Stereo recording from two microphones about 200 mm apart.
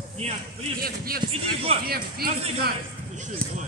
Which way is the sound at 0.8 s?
45° right (ahead or behind).